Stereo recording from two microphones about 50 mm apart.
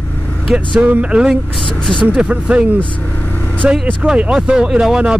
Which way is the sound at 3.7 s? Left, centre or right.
Right.